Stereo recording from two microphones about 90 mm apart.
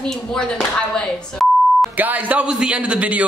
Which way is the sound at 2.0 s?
15° right (ahead or behind).